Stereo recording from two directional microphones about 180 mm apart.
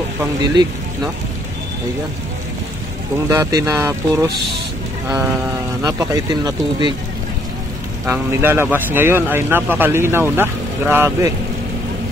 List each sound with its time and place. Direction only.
0.2 s speech: 20° right (ahead or behind)
3.3 s a man's voice: 15° right (ahead or behind)
5.8 s speech: 20° right (ahead or behind)
8.1 s a man's voice: 10° right (ahead or behind)